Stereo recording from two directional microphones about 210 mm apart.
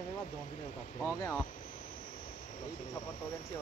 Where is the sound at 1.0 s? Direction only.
15° left (ahead or behind).